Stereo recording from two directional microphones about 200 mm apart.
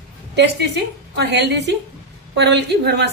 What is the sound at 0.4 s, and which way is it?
A woman's voice, 55° right (ahead or behind).